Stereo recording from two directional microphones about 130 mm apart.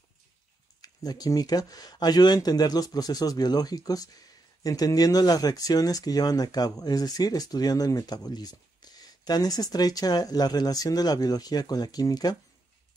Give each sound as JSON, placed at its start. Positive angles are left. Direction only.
{"t": 0.7, "sound": "speech", "side_deg": 30}